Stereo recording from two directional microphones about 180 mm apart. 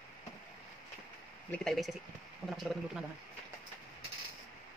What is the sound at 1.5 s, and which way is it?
Speech, centre (ahead or behind).